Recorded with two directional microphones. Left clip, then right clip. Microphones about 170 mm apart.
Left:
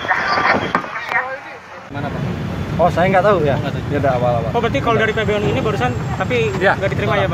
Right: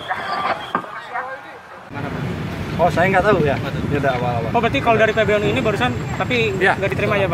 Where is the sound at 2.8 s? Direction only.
5° right (ahead or behind).